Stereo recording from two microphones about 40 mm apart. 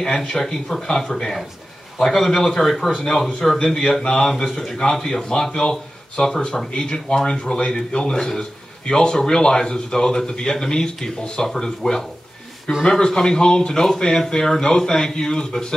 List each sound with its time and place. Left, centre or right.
0.2 s a man's voice: centre
5.3 s a man's voice: left
12.7 s a man's voice: centre